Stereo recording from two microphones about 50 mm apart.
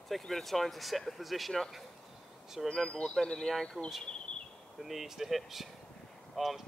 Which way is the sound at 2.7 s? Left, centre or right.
Centre.